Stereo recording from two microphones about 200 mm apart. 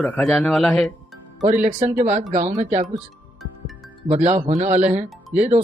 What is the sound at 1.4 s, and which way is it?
Speech, 35° right (ahead or behind).